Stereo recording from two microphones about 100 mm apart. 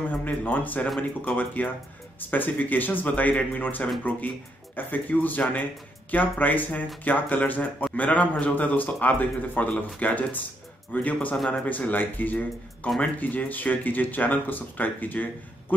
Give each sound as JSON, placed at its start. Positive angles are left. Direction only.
{"t": 0.1, "sound": "speech", "side_deg": 15}